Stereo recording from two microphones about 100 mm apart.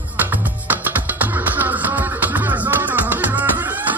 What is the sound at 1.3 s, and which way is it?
Music, 20° right (ahead or behind).